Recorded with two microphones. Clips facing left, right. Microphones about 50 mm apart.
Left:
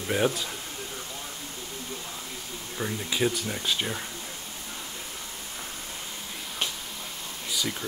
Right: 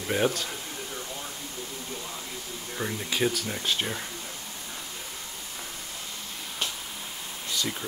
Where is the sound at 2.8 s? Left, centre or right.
Centre.